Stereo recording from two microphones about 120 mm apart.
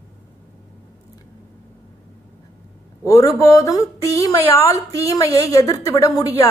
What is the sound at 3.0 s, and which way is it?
Speech, 30° left (ahead or behind).